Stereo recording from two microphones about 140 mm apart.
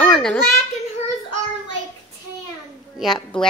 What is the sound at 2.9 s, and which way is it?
Speech, centre (ahead or behind).